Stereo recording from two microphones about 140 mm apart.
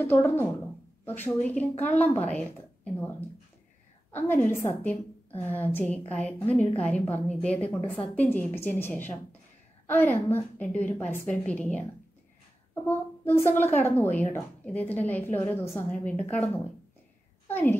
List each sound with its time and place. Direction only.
0.0 s a woman's voice: 15° left (ahead or behind)
12.8 s a woman's voice: 15° left (ahead or behind)